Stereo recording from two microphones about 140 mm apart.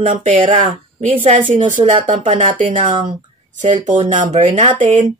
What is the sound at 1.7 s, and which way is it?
Speech, 60° right (ahead or behind).